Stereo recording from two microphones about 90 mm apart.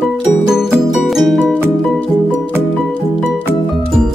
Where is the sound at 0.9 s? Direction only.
Centre (ahead or behind).